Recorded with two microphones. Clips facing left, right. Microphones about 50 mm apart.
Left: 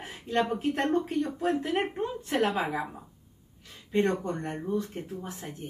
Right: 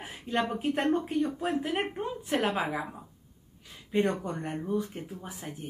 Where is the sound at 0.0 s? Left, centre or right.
Centre.